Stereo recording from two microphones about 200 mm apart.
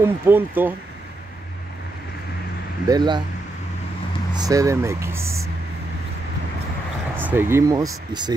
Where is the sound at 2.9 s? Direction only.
20° right (ahead or behind).